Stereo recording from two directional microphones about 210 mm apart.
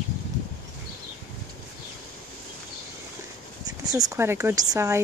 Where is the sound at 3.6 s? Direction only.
15° right (ahead or behind).